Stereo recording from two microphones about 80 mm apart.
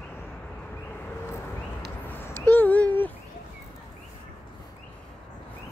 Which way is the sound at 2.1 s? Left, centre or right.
Left.